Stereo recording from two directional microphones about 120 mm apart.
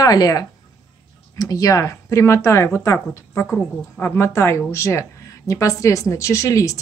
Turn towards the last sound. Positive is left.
turn(degrees=25)  # may be behind; listen again after turning